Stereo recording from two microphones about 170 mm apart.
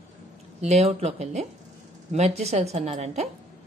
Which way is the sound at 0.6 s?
40° right (ahead or behind).